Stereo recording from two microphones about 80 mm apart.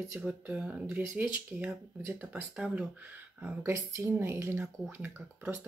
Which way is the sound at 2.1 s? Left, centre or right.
Centre.